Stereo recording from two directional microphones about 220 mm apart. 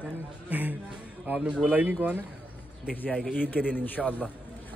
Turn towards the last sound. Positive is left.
turn(degrees=10)  # may be behind; listen again after turning